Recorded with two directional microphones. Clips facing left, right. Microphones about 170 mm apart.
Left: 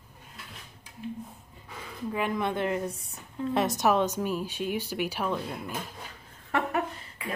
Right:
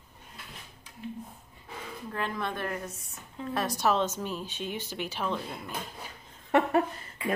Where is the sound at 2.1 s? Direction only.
15° left (ahead or behind).